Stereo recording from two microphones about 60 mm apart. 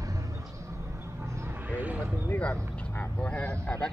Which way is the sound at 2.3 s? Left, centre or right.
Left.